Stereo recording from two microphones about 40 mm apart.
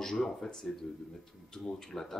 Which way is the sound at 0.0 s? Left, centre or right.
Centre.